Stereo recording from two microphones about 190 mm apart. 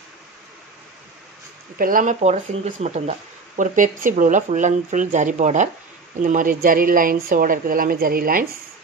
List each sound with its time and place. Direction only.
1.8 s speech: 45° right (ahead or behind)